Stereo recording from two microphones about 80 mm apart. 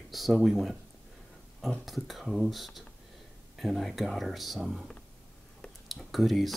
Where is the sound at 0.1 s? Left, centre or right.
Centre.